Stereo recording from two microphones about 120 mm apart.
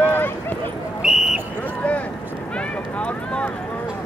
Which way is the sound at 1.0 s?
5° right (ahead or behind).